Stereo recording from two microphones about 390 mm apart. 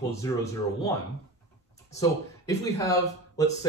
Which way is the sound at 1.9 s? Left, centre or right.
Centre.